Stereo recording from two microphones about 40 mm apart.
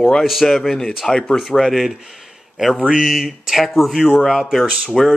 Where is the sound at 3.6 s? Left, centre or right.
Centre.